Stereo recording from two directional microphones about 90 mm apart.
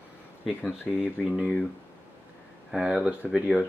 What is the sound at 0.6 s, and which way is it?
Speech, 20° left (ahead or behind).